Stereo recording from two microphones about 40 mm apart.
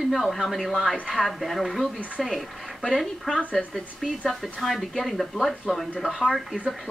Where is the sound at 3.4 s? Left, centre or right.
Left.